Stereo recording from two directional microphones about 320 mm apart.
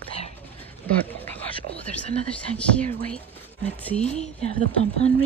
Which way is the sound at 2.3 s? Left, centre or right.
Centre.